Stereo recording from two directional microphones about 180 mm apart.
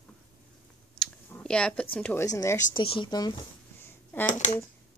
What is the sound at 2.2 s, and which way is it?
Speech, 15° left (ahead or behind).